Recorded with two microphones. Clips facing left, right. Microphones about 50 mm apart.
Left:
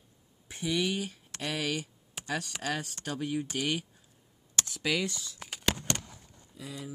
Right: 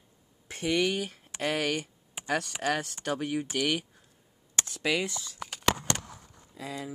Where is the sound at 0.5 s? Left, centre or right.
Right.